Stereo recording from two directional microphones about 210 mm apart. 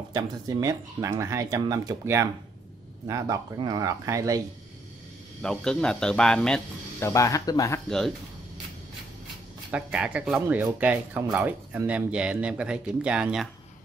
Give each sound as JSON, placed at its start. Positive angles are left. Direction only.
{"t": 0.1, "sound": "speech", "side_deg": -15}
{"t": 5.4, "sound": "speech", "side_deg": 5}
{"t": 9.7, "sound": "speech", "side_deg": -5}